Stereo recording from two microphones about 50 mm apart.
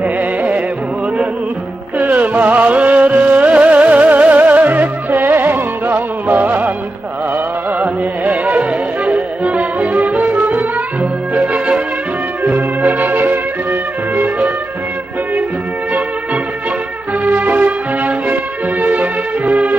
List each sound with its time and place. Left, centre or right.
0.0 s music: right
2.0 s music: right
7.8 s music: right
12.4 s music: right
17.2 s music: right